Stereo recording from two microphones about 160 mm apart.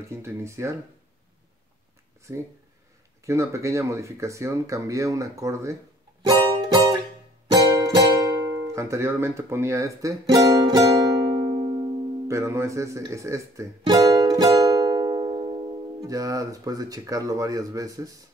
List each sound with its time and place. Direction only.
0.1 s speech: 15° right (ahead or behind)
2.3 s speech: 15° right (ahead or behind)
6.2 s music: 25° right (ahead or behind)
7.9 s speech: 20° right (ahead or behind)
11.3 s music: 25° right (ahead or behind)
16.0 s speech: 20° right (ahead or behind)